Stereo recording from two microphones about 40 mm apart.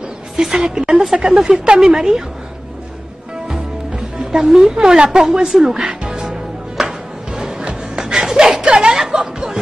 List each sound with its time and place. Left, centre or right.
0.6 s speech: right
1.8 s speech: centre
4.3 s speech: centre
4.7 s a woman's voice: right
6.8 s music: centre
8.0 s music: centre
8.7 s a sound: centre